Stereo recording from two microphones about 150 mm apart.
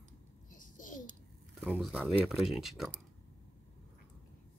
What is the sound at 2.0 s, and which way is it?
Speech, 5° right (ahead or behind).